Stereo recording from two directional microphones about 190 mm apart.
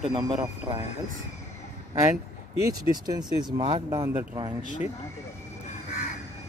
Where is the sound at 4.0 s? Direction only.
10° right (ahead or behind).